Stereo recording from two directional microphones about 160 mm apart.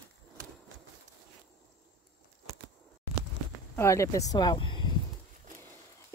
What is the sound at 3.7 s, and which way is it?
Speech, 20° left (ahead or behind).